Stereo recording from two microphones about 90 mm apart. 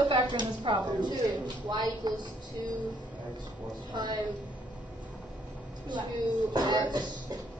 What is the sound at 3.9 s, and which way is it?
Speech, 55° right (ahead or behind).